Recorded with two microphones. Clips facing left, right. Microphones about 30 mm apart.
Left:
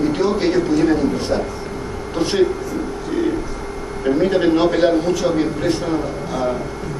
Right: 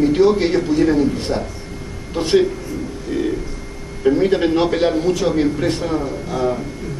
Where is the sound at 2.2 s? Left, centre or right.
Centre.